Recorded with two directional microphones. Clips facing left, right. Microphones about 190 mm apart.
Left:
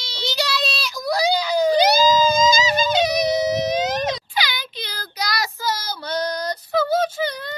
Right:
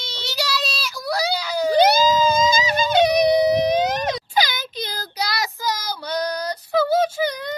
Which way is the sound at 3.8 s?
45° right (ahead or behind).